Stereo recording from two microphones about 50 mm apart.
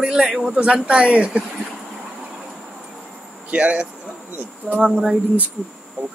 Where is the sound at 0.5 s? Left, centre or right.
Right.